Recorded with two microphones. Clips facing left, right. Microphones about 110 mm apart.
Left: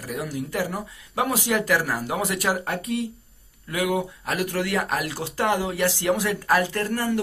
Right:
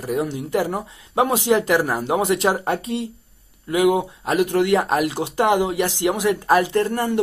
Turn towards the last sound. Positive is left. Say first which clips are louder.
# right 5 dB
turn(degrees=-20)  # may be behind; listen again after turning